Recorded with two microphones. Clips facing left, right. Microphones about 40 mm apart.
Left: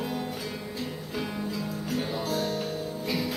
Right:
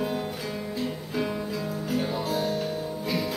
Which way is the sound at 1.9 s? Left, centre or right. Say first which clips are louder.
Right 2 dB; centre.